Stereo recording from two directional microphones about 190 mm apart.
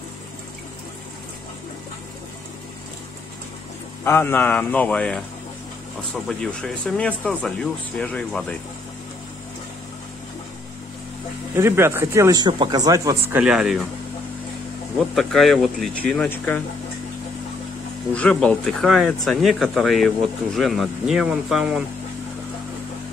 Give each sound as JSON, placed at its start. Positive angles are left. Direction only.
{"t": 4.0, "sound": "speech", "side_deg": 10}
{"t": 6.2, "sound": "speech", "side_deg": 5}
{"t": 11.5, "sound": "speech", "side_deg": -15}
{"t": 13.4, "sound": "speech", "side_deg": -5}
{"t": 15.1, "sound": "speech", "side_deg": 0}
{"t": 18.1, "sound": "speech", "side_deg": 5}